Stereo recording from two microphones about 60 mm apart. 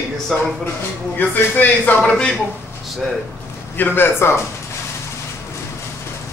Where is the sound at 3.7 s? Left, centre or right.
Left.